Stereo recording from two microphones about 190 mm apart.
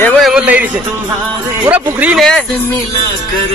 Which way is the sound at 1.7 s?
5° right (ahead or behind).